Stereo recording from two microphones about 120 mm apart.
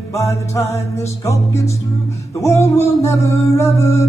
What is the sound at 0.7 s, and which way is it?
Music, 25° left (ahead or behind).